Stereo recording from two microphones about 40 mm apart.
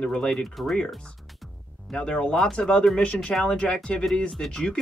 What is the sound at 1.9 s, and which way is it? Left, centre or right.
Speech, left.